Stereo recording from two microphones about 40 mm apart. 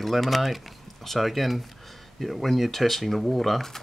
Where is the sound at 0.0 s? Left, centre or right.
Centre.